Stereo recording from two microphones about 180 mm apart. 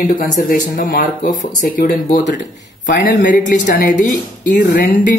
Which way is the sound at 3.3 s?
45° left (ahead or behind).